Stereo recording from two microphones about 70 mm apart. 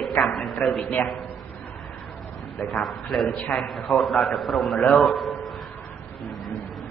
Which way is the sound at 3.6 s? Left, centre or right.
Centre.